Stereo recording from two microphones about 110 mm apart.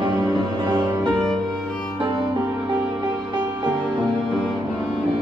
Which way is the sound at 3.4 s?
35° right (ahead or behind).